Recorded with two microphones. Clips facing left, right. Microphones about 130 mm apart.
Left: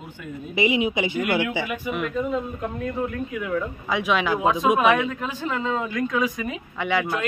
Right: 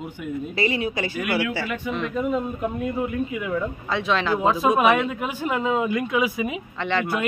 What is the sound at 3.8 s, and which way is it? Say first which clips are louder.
Speech: left 1 dB; 10° left (ahead or behind).